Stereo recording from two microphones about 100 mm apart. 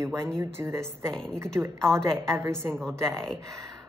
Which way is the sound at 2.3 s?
25° right (ahead or behind).